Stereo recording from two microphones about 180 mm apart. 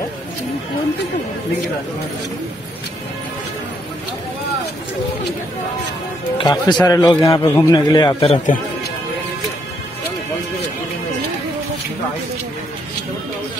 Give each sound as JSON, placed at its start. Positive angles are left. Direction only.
{"t": 6.3, "sound": "a man's voice", "side_deg": 25}